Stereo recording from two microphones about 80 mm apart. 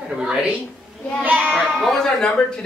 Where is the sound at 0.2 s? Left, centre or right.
Centre.